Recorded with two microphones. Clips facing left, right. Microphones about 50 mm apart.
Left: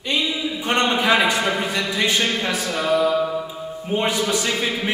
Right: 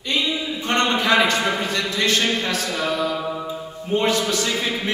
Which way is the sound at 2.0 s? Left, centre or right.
Centre.